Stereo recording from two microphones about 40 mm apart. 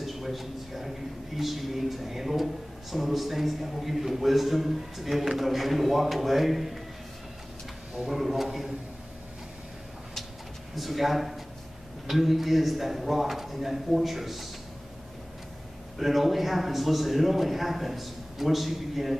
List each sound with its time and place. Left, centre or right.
0.0 s a man's voice: centre
8.0 s a man's voice: centre
10.8 s a man's voice: centre
16.0 s a man's voice: centre